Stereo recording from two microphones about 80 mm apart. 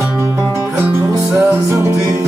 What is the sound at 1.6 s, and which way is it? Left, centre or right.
Music, right.